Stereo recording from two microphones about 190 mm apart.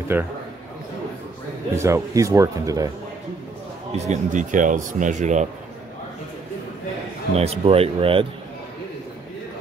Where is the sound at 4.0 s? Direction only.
40° right (ahead or behind).